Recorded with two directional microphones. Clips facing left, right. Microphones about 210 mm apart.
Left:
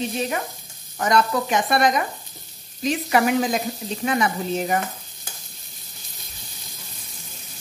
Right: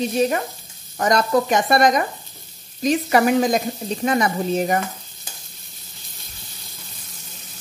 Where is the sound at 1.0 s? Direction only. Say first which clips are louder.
Right 3 dB; 40° right (ahead or behind).